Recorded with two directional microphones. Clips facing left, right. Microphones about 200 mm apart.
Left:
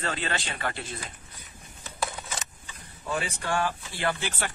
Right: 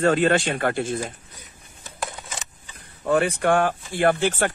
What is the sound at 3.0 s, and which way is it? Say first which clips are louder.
Speech: right 12 dB; 60° right (ahead or behind).